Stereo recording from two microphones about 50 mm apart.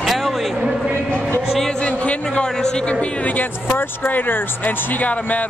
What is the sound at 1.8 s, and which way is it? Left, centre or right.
A man's voice, left.